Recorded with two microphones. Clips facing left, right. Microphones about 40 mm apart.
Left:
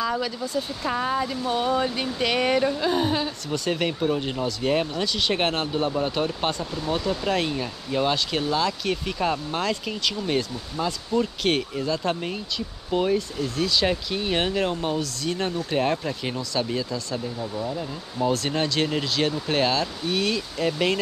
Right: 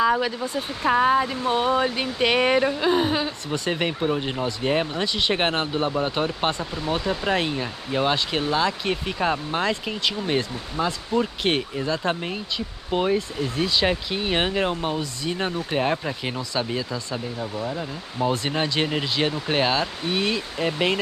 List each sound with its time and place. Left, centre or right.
0.0 s speech: right